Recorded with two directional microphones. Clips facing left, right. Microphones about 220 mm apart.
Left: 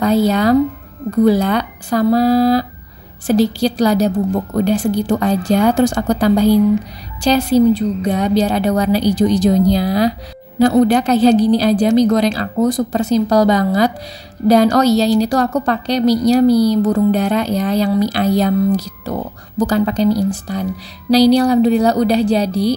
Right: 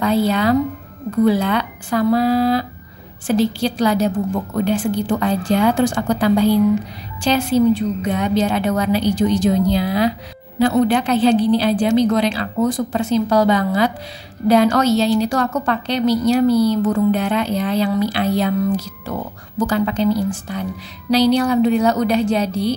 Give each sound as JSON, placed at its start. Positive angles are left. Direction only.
{"t": 0.0, "sound": "a woman's voice", "side_deg": 40}